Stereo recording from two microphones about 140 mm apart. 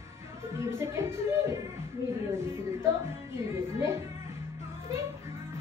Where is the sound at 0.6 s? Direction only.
20° right (ahead or behind).